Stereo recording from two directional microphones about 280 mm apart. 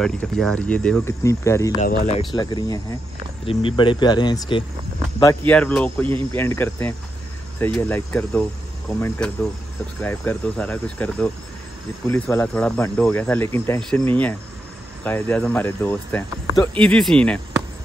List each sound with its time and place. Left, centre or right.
0.0 s speech: centre
1.8 s speech: left
5.5 s speech: centre